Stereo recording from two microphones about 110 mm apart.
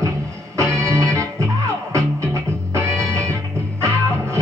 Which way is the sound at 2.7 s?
30° right (ahead or behind).